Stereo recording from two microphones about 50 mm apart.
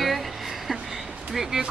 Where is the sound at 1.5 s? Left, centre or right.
Centre.